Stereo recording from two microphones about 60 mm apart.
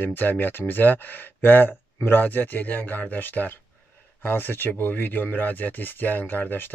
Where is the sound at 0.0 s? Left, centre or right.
Left.